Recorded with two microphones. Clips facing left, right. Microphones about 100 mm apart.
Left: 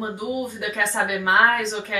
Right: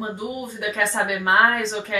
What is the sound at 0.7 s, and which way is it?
A woman's voice, 20° right (ahead or behind).